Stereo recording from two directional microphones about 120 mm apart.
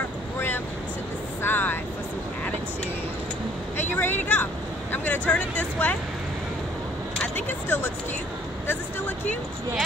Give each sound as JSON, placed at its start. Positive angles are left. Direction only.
{"t": 1.4, "sound": "vehicle", "side_deg": 15}
{"t": 3.7, "sound": "a sound", "side_deg": 15}
{"t": 7.2, "sound": "vehicle", "side_deg": 15}